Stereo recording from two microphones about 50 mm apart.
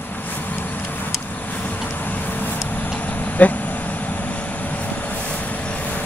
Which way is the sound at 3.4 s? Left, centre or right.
Left.